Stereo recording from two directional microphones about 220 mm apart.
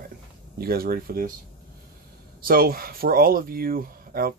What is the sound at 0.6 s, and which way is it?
Speech, 45° right (ahead or behind).